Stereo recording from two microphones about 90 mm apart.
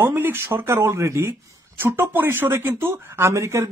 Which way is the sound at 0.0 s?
25° right (ahead or behind).